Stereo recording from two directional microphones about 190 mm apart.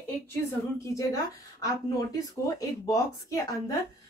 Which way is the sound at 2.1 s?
15° left (ahead or behind).